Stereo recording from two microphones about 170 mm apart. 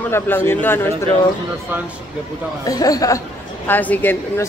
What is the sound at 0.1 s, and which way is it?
Speech, 15° left (ahead or behind).